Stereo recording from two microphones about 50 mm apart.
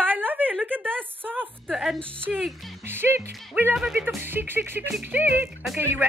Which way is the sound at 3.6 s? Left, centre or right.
Right.